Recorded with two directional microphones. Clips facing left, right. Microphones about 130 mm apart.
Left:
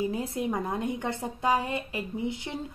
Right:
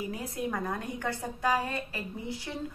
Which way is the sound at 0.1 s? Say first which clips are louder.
Left 4 dB; 25° left (ahead or behind).